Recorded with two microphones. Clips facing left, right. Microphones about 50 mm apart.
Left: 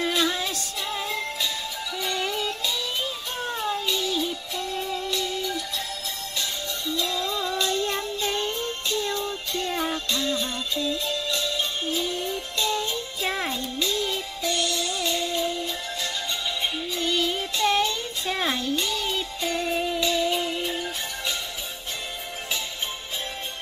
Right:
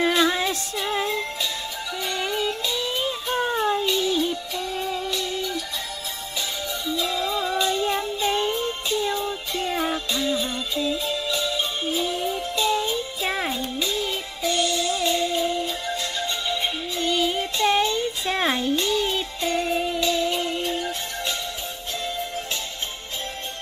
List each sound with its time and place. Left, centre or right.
0.1 s music: centre
6.9 s music: centre